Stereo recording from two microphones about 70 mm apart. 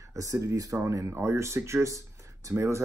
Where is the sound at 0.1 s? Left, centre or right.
Right.